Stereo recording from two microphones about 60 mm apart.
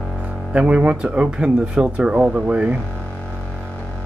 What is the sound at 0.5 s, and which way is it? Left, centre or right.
Speech, centre.